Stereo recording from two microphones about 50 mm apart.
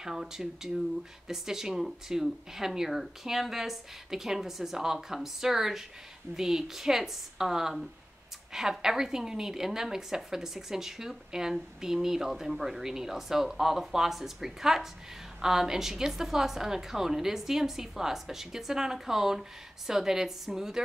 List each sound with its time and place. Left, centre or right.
0.0 s a woman's voice: centre